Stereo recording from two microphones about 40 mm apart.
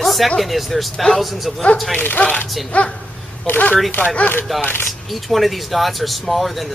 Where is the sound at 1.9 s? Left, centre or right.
Left.